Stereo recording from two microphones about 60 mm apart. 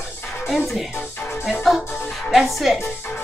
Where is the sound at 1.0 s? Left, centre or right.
Left.